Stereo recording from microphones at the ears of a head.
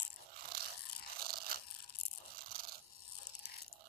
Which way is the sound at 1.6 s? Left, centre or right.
Left.